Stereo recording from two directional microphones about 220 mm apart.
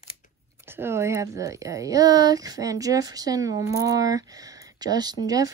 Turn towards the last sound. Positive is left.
turn(degrees=-15)  # may be behind; listen again after turning